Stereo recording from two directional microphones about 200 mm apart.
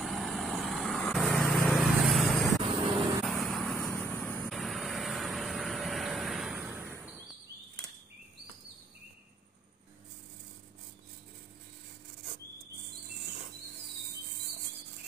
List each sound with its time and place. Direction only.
0.0 s vehicle: centre (ahead or behind)